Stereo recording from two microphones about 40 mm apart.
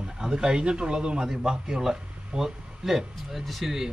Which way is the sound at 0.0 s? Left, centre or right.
Centre.